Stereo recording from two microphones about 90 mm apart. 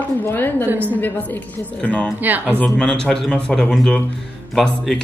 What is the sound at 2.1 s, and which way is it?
Speech, 20° right (ahead or behind).